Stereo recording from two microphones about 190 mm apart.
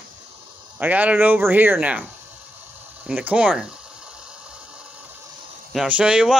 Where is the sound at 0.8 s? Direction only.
10° right (ahead or behind).